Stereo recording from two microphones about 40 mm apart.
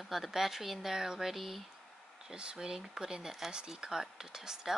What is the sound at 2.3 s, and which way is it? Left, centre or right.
Speech, right.